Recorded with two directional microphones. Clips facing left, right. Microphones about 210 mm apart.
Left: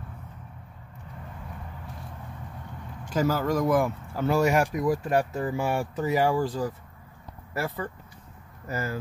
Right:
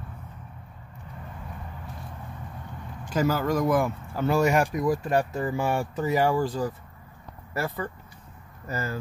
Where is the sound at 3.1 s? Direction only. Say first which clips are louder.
Even; centre (ahead or behind).